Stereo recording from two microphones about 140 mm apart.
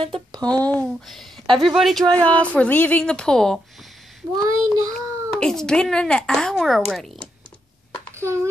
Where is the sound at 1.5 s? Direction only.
Centre (ahead or behind).